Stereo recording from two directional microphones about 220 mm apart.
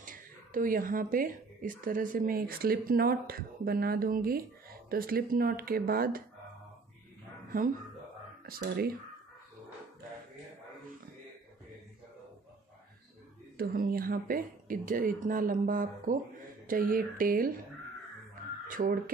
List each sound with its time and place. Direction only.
0.0 s speech: 40° right (ahead or behind)
8.5 s speech: 45° right (ahead or behind)
13.6 s speech: 40° right (ahead or behind)
18.7 s speech: 40° right (ahead or behind)